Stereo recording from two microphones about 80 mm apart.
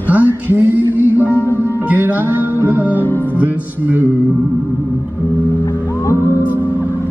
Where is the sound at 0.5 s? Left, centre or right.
Right.